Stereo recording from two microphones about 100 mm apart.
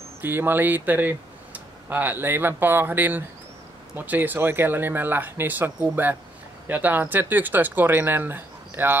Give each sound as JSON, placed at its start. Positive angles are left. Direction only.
{"t": 0.2, "sound": "speech", "side_deg": -20}